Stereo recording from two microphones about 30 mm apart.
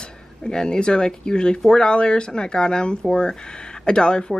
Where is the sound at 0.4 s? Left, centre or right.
Left.